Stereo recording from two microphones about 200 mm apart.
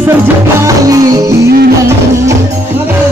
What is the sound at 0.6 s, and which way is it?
Music, 15° right (ahead or behind).